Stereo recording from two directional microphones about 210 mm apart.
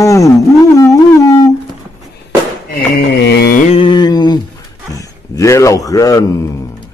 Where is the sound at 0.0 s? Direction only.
15° left (ahead or behind).